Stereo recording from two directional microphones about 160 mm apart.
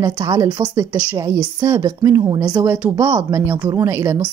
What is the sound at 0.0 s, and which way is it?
A woman's voice, 25° right (ahead or behind).